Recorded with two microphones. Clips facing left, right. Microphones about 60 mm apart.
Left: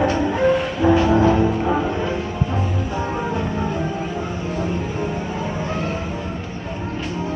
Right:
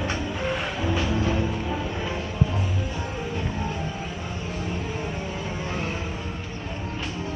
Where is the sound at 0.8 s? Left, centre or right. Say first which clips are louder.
Left 12 dB; left.